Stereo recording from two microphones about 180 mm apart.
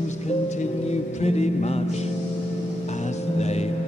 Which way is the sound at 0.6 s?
40° left (ahead or behind).